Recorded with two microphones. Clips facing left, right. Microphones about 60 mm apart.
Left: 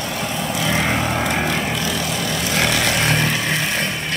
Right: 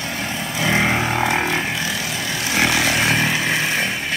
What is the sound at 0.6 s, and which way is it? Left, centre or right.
Vehicle, right.